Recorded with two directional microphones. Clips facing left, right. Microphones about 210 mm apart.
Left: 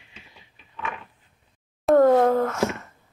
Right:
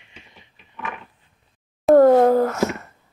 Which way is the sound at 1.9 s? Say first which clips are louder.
Right 4 dB; 30° right (ahead or behind).